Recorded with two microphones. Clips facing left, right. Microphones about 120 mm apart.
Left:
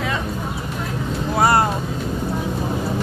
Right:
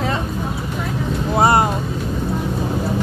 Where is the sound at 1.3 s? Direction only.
20° right (ahead or behind).